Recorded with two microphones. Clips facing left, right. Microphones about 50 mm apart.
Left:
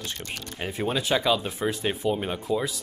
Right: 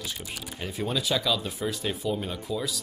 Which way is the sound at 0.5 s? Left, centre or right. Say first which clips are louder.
Left 3 dB; left.